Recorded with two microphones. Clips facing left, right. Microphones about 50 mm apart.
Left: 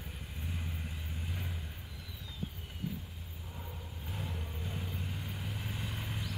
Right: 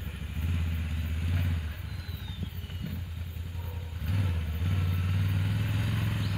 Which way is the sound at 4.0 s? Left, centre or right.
Right.